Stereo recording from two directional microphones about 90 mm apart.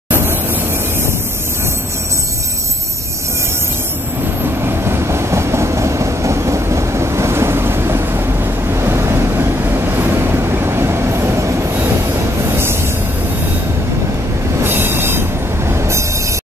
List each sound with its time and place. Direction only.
0.1 s a sound: 25° right (ahead or behind)
4.4 s train: 25° right (ahead or behind)
14.6 s train: 25° right (ahead or behind)
15.7 s vehicle: 30° right (ahead or behind)